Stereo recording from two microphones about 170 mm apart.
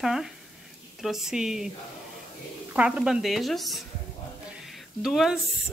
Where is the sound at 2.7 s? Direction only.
5° right (ahead or behind).